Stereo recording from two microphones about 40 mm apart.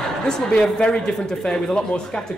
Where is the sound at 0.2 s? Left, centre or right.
Centre.